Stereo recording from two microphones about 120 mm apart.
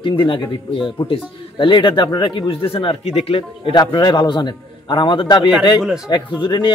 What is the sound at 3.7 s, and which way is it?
A man's voice, 40° left (ahead or behind).